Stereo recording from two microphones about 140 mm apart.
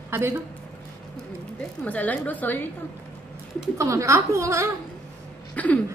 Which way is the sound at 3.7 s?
20° right (ahead or behind).